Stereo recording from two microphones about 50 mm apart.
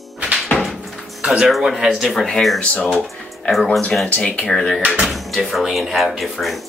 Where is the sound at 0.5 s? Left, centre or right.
Centre.